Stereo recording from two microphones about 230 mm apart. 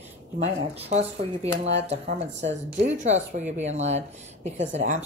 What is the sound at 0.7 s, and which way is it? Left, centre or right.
Speech, right.